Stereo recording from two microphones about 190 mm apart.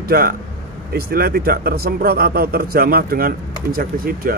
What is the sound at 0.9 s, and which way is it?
A man's voice, 55° right (ahead or behind).